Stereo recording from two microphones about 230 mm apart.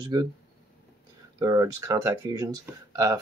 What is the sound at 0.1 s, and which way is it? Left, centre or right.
Speech, centre.